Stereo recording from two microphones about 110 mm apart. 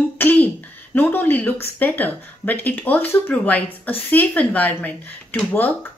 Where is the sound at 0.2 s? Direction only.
15° left (ahead or behind).